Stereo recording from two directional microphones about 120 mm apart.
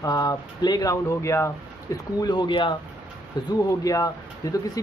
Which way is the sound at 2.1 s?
35° left (ahead or behind).